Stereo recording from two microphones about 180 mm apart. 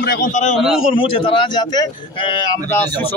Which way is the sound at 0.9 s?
30° left (ahead or behind).